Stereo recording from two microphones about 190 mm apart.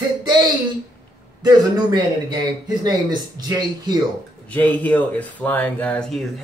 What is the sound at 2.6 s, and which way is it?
Speech, 20° right (ahead or behind).